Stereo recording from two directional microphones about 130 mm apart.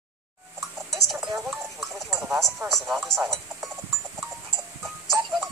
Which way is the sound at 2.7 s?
Centre (ahead or behind).